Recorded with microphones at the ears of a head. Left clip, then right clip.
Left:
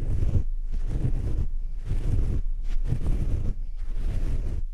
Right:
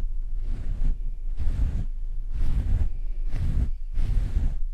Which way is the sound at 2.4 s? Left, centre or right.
Right.